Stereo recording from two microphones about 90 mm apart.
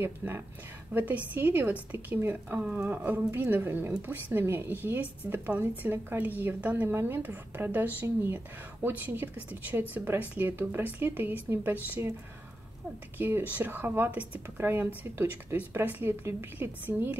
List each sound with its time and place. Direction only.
0.0 s a woman's voice: 25° right (ahead or behind)
13.2 s a woman's voice: 20° right (ahead or behind)